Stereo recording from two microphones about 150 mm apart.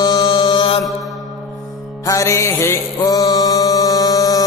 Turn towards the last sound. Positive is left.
turn(degrees=25)  # may be behind; listen again after turning